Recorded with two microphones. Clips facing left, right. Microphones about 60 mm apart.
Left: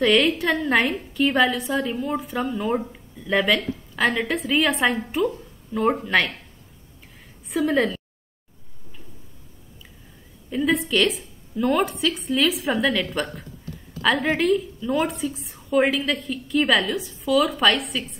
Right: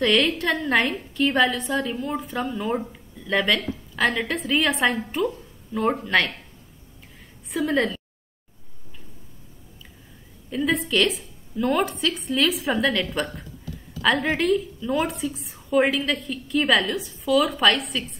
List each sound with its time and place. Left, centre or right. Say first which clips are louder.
0.0 s a woman's voice: left 2 dB; centre
7.4 s a woman's voice: left 2 dB; centre
10.5 s a woman's voice: left 1 dB; centre